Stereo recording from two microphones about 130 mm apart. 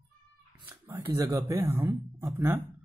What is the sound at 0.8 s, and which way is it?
Speech, 25° right (ahead or behind).